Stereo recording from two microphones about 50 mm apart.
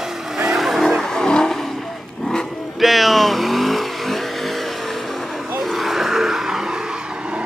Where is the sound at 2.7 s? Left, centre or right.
Centre.